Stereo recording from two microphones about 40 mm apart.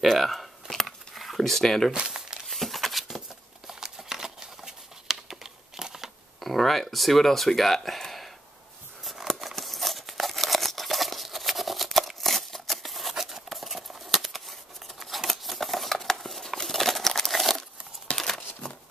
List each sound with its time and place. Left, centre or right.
0.0 s a sound: centre
2.0 s crumpling: centre
2.4 s a sound: centre
3.6 s a sound: centre
6.4 s speech: centre
9.0 s scissors: centre
9.4 s crumpling: centre
13.1 s scissors: centre
16.6 s crumpling: centre